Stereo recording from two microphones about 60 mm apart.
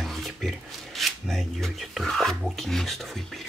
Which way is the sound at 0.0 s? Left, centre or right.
Centre.